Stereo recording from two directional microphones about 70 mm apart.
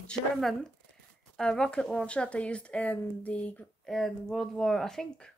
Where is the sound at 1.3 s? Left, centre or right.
Centre.